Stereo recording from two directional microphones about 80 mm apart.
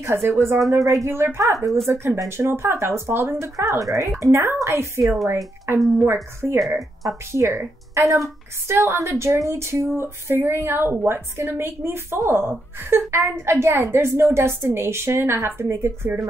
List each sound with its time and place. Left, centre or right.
0.0 s a woman's voice: right
3.5 s a woman's voice: right
5.0 s speech: centre
6.4 s a woman's voice: right